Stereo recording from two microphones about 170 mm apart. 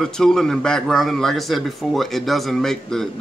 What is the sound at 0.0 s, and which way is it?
A man's voice, 5° left (ahead or behind).